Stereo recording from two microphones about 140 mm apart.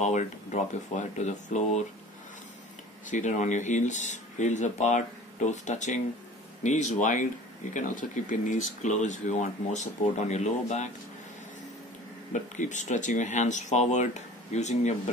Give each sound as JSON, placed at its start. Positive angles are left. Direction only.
{"t": 0.0, "sound": "speech", "side_deg": 55}
{"t": 3.1, "sound": "speech", "side_deg": 60}
{"t": 12.3, "sound": "speech", "side_deg": 60}